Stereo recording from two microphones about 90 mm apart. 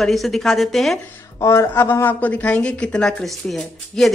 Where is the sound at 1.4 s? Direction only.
30° left (ahead or behind).